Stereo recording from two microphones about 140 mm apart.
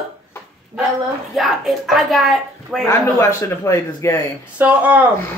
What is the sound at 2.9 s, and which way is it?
A man's voice, 20° left (ahead or behind).